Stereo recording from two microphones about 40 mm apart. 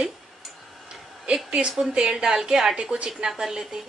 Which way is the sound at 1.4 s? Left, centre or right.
Right.